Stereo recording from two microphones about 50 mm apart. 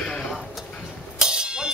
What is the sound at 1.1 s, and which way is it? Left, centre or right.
Music, centre.